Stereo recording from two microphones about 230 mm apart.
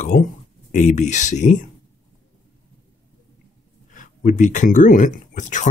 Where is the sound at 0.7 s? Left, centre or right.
Left.